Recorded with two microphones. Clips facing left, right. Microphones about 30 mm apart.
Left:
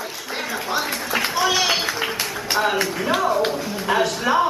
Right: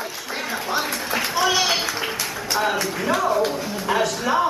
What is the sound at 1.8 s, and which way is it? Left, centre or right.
Music, centre.